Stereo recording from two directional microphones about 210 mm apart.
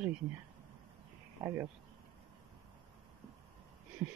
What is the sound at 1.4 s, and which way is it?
Speech, 10° right (ahead or behind).